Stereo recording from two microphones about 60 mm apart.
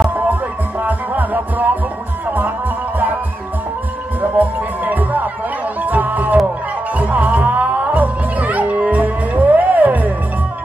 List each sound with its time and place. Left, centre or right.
0.1 s music: right
4.2 s music: right